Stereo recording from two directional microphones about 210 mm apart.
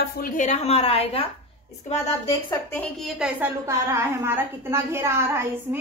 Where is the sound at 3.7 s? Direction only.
15° right (ahead or behind).